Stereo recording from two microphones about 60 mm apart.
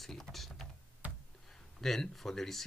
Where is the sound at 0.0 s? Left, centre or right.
Centre.